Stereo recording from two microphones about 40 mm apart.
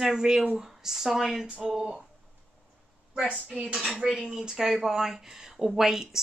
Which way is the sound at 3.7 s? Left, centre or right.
Centre.